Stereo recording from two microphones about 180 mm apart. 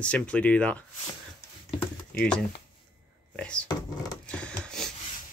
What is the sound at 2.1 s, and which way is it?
Speech, 5° left (ahead or behind).